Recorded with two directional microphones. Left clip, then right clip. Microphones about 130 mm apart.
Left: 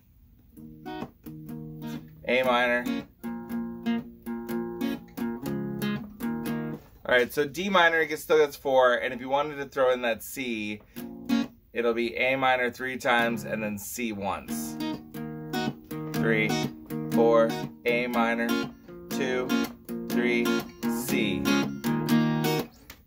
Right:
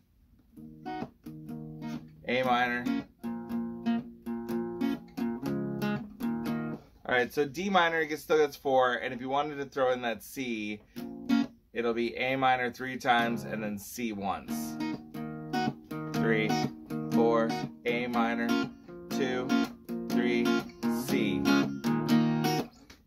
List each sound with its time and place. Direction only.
2.2 s speech: 20° right (ahead or behind)
2.8 s music: 35° right (ahead or behind)
7.1 s speech: 10° right (ahead or behind)
14.8 s music: 30° right (ahead or behind)
16.2 s music: 15° right (ahead or behind)
17.8 s speech: 15° right (ahead or behind)
18.5 s music: 35° right (ahead or behind)
19.1 s music: 15° right (ahead or behind)
19.4 s music: 35° right (ahead or behind)
20.2 s speech: 15° right (ahead or behind)
20.4 s music: 35° right (ahead or behind)
20.9 s music: 15° right (ahead or behind)
21.5 s music: 35° right (ahead or behind)